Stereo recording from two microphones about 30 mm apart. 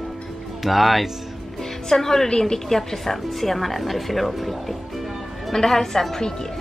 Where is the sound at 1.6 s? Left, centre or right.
Centre.